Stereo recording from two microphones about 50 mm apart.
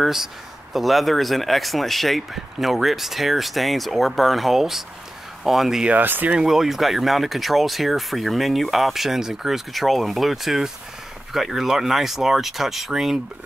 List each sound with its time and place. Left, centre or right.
0.0 s speech: centre
5.9 s speech: right
6.3 s speech: centre